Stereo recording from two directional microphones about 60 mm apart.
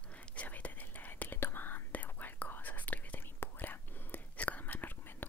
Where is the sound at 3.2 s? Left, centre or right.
Left.